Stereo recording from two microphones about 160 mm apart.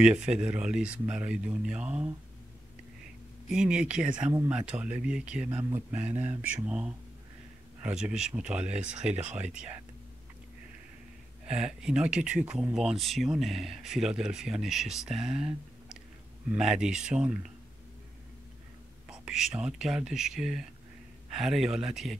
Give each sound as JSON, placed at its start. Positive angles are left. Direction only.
{"t": 0.0, "sound": "speech", "side_deg": -5}
{"t": 3.4, "sound": "speech", "side_deg": -5}
{"t": 4.3, "sound": "speech", "side_deg": -20}
{"t": 4.6, "sound": "speech", "side_deg": -5}
{"t": 11.4, "sound": "speech", "side_deg": -5}
{"t": 19.0, "sound": "speech", "side_deg": -5}